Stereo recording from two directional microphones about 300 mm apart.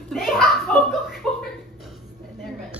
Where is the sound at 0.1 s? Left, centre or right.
Centre.